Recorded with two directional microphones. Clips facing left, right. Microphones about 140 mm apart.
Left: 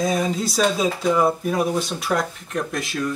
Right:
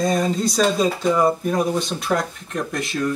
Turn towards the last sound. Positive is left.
turn(degrees=0)  # may be behind; listen again after turning